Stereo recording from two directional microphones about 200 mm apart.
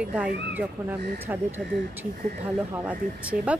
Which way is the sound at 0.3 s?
60° right (ahead or behind).